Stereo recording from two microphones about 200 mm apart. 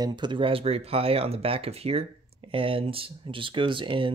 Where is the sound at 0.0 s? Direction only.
20° right (ahead or behind).